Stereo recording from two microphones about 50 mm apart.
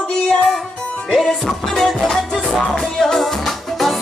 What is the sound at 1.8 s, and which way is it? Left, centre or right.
Music, centre.